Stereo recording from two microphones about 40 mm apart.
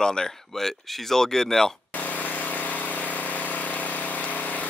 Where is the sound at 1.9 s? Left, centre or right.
Left.